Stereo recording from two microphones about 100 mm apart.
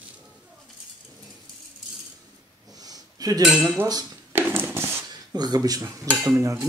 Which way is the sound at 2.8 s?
40° right (ahead or behind).